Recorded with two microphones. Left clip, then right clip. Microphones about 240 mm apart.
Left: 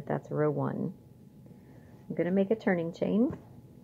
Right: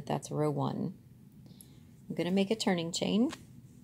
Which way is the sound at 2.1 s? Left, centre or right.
Right.